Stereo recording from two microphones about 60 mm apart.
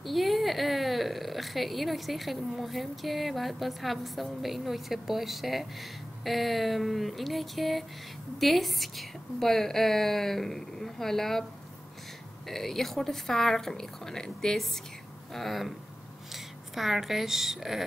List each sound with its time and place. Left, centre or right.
0.0 s speech: centre
12.4 s a woman's voice: centre